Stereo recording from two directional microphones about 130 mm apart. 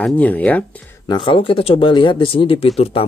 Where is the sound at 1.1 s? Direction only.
40° left (ahead or behind).